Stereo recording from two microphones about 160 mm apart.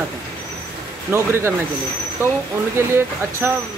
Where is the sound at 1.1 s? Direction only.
15° right (ahead or behind).